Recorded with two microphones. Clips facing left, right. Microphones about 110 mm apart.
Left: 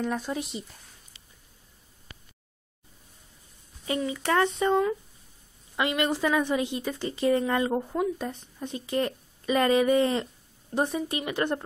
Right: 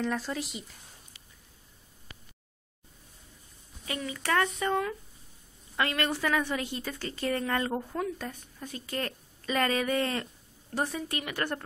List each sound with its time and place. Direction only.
0.1 s speech: 20° left (ahead or behind)
3.8 s a woman's voice: 25° left (ahead or behind)